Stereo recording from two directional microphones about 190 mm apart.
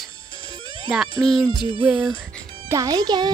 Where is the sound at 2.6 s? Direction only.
20° right (ahead or behind).